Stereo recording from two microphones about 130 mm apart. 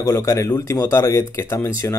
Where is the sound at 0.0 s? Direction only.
20° left (ahead or behind).